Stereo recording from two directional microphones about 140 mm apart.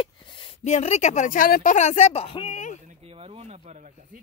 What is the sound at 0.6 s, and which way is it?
Speech, 50° left (ahead or behind).